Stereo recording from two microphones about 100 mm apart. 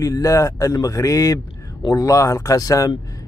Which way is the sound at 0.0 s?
35° left (ahead or behind).